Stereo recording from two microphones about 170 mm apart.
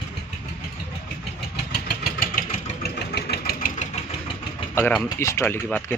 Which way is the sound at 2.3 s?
60° left (ahead or behind).